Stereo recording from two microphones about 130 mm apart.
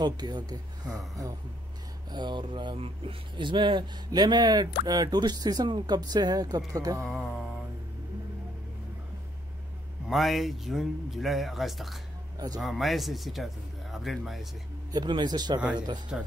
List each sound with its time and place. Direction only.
0.0 s speech: 35° right (ahead or behind)
7.0 s music: 5° left (ahead or behind)
10.0 s a man's voice: centre (ahead or behind)
14.9 s speech: 35° right (ahead or behind)